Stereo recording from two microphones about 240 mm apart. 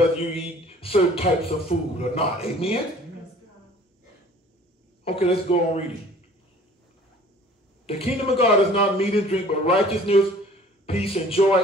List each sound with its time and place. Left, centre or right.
0.7 s a man's voice: left
5.0 s a man's voice: left
7.8 s a man's voice: left